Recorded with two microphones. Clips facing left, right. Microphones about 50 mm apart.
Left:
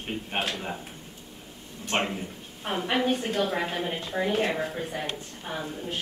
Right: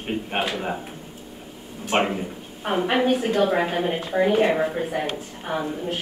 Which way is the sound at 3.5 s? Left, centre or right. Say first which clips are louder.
Right 7 dB; centre.